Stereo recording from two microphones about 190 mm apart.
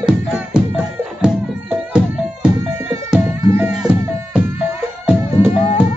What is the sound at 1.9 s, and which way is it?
Music, 5° right (ahead or behind).